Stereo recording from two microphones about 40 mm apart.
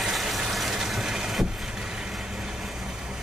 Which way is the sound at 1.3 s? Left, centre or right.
Centre.